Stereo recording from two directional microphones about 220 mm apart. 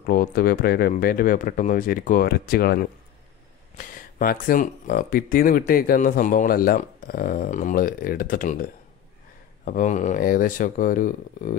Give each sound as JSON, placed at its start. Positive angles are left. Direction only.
{"t": 0.0, "sound": "speech", "side_deg": 45}
{"t": 9.7, "sound": "speech", "side_deg": 35}